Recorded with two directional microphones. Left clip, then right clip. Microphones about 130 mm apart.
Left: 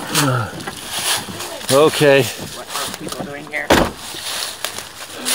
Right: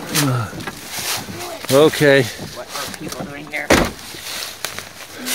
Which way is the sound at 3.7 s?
90° left.